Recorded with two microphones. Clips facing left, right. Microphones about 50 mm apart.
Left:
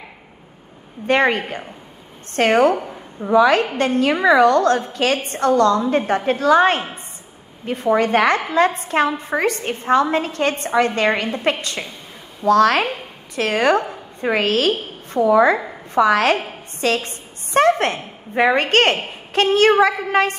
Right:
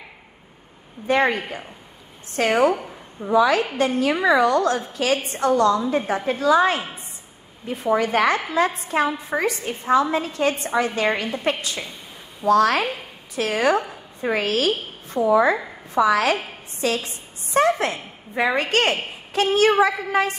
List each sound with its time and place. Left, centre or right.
1.0 s a woman's voice: left
10.7 s a woman's voice: left
15.2 s a woman's voice: left
15.9 s a woman's voice: left